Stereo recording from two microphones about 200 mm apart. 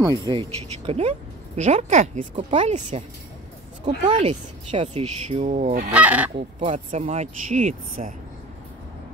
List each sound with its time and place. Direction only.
0.0 s speech: 20° right (ahead or behind); by 3.0 s 35° right (ahead or behind)
4.2 s speech: 30° right (ahead or behind)
5.9 s fowl: 5° right (ahead or behind)
6.3 s speech: 30° right (ahead or behind)